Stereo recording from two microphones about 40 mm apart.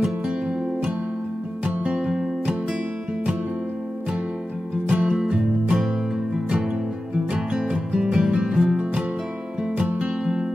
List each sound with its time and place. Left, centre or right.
1.6 s music: right
2.0 s music: centre
4.8 s music: right
7.3 s music: centre
9.8 s music: right